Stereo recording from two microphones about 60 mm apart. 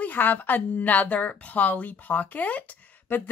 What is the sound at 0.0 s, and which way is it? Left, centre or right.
A woman's voice, left.